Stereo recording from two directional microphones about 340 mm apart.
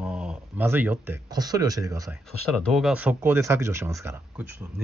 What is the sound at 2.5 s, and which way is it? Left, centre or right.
Speech, centre.